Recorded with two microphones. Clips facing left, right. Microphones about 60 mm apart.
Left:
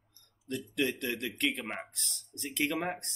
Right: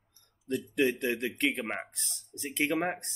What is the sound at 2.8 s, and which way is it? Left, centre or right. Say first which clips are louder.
Speech: right 3 dB; centre.